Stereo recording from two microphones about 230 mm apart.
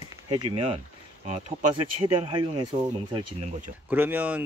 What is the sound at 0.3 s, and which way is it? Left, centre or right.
Speech, centre.